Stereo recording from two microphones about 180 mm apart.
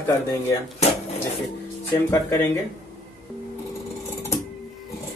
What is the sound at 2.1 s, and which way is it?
Speech, 15° left (ahead or behind).